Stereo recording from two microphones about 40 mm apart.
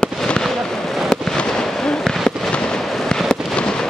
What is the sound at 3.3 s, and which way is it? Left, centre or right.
Fireworks, centre.